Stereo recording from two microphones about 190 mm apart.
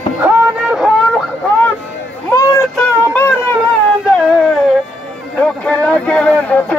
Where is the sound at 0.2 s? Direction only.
Centre (ahead or behind).